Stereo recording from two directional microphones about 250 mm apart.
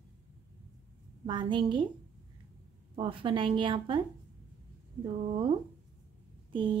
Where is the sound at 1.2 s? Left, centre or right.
Centre.